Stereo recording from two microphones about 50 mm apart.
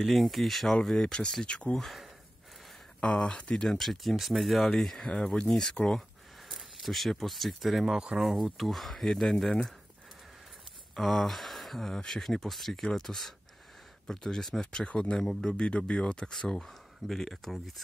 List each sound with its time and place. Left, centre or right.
0.0 s speech: centre; by 1.8 s left
1.8 s speech: centre
3.0 s speech: centre
3.6 s speech: centre
5.5 s speech: centre
7.8 s speech: centre
11.0 s speech: centre
14.9 s speech: left; by 17.8 s centre